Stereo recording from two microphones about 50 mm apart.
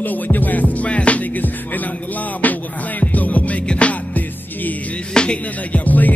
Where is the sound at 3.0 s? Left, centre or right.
Left.